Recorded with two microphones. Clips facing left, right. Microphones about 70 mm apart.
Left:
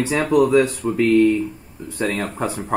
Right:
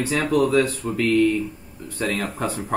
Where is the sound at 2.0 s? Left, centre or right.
Centre.